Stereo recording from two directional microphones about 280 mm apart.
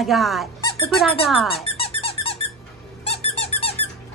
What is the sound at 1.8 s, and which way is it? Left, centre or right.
Squeak, centre.